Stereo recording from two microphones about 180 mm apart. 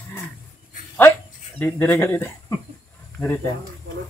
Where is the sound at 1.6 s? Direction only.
10° left (ahead or behind).